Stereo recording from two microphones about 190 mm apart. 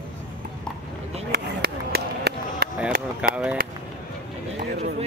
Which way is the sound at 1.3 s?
55° right (ahead or behind).